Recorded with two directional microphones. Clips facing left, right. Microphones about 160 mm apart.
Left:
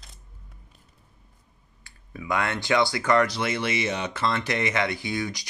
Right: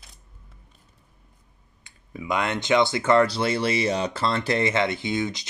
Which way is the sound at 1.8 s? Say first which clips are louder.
Right 1 dB; 20° right (ahead or behind).